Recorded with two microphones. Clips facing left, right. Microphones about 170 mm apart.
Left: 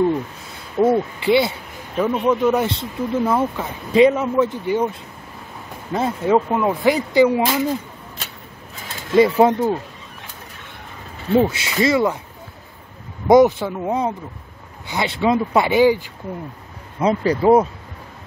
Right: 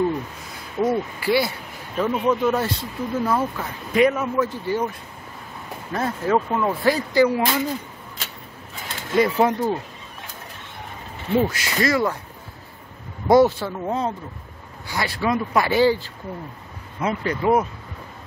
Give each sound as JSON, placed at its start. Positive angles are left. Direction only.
{"t": 0.7, "sound": "speech", "side_deg": 25}
{"t": 2.0, "sound": "speech", "side_deg": 10}
{"t": 5.9, "sound": "speech", "side_deg": 20}
{"t": 9.2, "sound": "speech", "side_deg": 25}
{"t": 11.3, "sound": "speech", "side_deg": 25}
{"t": 13.3, "sound": "speech", "side_deg": 20}
{"t": 17.0, "sound": "speech", "side_deg": 35}